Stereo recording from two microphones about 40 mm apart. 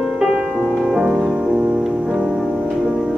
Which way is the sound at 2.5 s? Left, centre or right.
Right.